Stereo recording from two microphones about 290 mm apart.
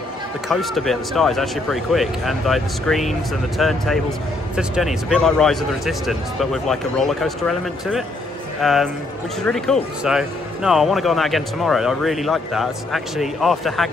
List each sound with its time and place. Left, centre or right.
0.5 s speech: centre